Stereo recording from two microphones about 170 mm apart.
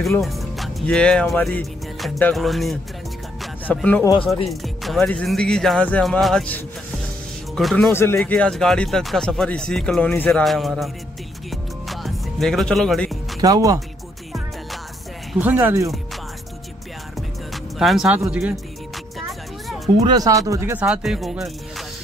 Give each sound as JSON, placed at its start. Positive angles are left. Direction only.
{"t": 0.0, "sound": "speech", "side_deg": 0}
{"t": 4.0, "sound": "speech", "side_deg": 25}
{"t": 4.5, "sound": "speech", "side_deg": 0}
{"t": 7.9, "sound": "speech", "side_deg": 15}
{"t": 8.2, "sound": "speech", "side_deg": 5}
{"t": 11.5, "sound": "music", "side_deg": 0}
{"t": 13.4, "sound": "speech", "side_deg": -20}
{"t": 15.3, "sound": "speech", "side_deg": -10}
{"t": 17.7, "sound": "speech", "side_deg": 0}
{"t": 20.0, "sound": "speech", "side_deg": -25}
{"t": 20.8, "sound": "speech", "side_deg": -5}